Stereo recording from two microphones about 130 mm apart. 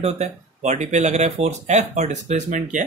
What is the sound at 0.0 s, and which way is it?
Speech, 60° right (ahead or behind).